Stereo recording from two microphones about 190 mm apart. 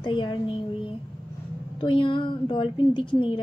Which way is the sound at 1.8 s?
25° left (ahead or behind).